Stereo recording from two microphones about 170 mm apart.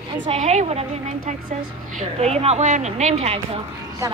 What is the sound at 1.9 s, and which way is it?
Speech, 40° right (ahead or behind).